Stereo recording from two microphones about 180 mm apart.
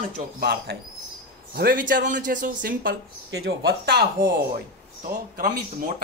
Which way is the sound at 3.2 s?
65° right (ahead or behind).